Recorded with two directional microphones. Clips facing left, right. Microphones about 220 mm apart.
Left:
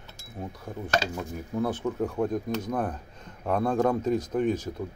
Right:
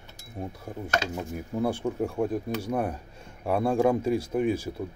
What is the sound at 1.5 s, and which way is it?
Speech, 10° right (ahead or behind).